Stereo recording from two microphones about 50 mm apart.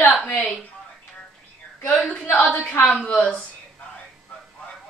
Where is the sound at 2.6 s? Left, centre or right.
Left.